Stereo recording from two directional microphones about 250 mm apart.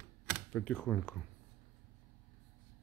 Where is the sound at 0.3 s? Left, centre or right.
Centre.